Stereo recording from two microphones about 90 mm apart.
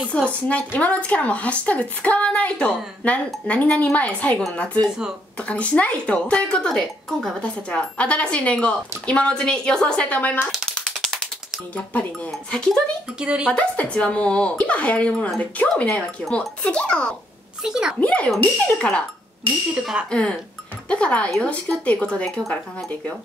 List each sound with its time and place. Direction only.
0.3 s speech: 15° left (ahead or behind)
4.8 s speech: 5° right (ahead or behind)
5.4 s speech: 15° left (ahead or behind)
11.0 s typing: 5° left (ahead or behind)
11.7 s speech: 15° left (ahead or behind)
13.2 s speech: 10° right (ahead or behind)
13.5 s speech: 10° left (ahead or behind)
17.6 s speech: 5° right (ahead or behind)
18.0 s speech: 15° left (ahead or behind)
19.7 s speech: 10° right (ahead or behind)
20.1 s speech: 15° left (ahead or behind)